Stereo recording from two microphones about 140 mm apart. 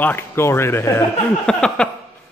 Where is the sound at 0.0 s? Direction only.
15° left (ahead or behind).